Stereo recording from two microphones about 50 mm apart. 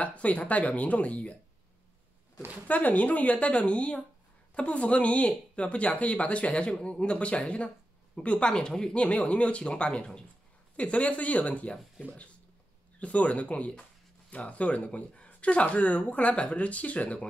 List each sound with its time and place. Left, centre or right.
0.0 s speech: left
2.7 s speech: left
13.0 s speech: left